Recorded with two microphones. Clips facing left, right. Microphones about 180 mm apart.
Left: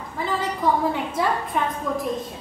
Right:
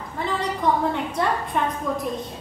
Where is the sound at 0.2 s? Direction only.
Centre (ahead or behind).